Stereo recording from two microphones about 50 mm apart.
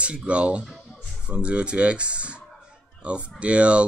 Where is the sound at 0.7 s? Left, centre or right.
Centre.